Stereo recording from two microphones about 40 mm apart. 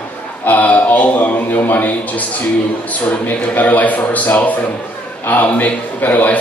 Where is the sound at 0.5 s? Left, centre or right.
Left.